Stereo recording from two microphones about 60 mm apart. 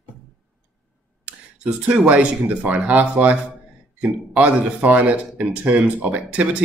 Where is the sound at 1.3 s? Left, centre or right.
Centre.